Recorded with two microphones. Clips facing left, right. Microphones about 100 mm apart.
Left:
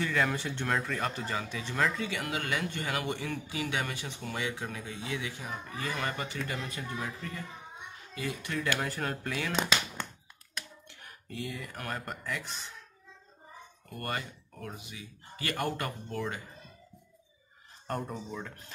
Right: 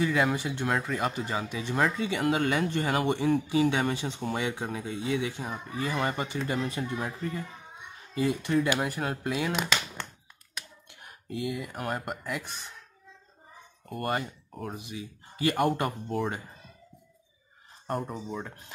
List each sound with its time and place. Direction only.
0.0 s speech: 15° right (ahead or behind)
8.6 s speech: 15° right (ahead or behind)
11.0 s speech: 15° right (ahead or behind)
13.8 s speech: 25° right (ahead or behind)
17.8 s speech: centre (ahead or behind)